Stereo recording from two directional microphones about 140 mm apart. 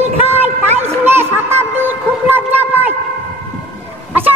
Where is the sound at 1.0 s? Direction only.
15° right (ahead or behind).